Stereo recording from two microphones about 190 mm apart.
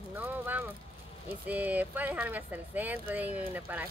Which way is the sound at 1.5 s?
10° right (ahead or behind).